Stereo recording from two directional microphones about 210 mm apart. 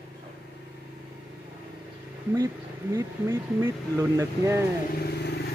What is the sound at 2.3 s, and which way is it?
Speech, 15° right (ahead or behind).